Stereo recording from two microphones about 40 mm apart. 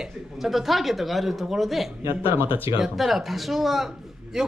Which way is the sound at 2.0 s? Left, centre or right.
Right.